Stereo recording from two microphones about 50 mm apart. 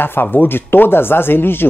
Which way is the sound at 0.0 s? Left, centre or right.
Left.